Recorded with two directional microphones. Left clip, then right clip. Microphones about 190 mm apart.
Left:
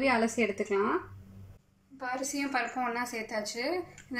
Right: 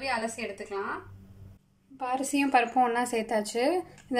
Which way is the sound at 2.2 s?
40° right (ahead or behind).